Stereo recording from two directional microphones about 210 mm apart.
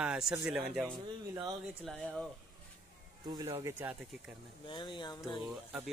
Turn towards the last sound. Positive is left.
turn(degrees=-5)  # may be behind; listen again after turning